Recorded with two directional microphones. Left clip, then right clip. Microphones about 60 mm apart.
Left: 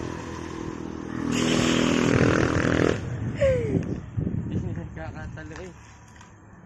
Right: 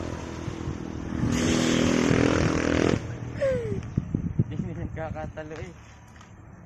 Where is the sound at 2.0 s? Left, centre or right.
Right.